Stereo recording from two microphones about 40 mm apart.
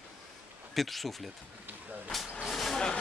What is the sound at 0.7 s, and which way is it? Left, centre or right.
Speech, centre.